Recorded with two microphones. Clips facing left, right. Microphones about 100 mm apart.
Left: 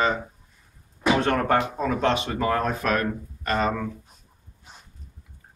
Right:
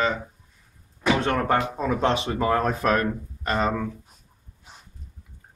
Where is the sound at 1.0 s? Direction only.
5° left (ahead or behind).